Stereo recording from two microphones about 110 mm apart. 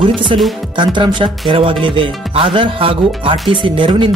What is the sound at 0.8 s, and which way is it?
Speech, 45° right (ahead or behind).